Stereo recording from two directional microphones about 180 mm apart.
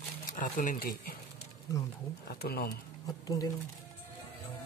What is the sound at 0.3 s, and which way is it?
Speech, 50° left (ahead or behind).